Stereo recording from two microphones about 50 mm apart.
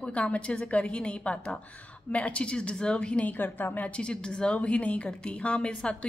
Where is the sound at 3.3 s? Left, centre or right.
Left.